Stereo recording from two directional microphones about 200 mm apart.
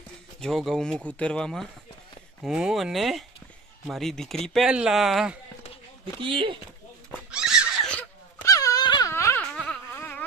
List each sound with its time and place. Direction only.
0.4 s speech: centre (ahead or behind)
6.2 s speech: 25° right (ahead or behind)
7.2 s wail: 5° right (ahead or behind)